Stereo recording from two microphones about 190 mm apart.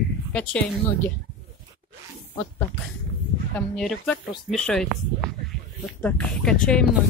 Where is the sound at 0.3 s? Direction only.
5° left (ahead or behind).